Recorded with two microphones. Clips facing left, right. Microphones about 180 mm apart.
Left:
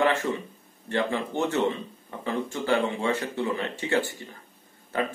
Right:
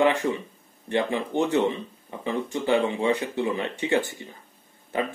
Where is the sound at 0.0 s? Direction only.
15° right (ahead or behind).